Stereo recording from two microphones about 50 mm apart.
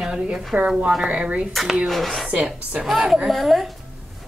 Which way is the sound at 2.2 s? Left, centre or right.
Right.